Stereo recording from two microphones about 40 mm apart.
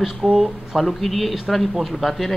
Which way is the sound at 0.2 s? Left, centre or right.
Centre.